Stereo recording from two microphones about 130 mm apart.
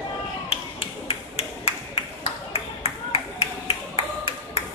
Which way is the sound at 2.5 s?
50° left (ahead or behind).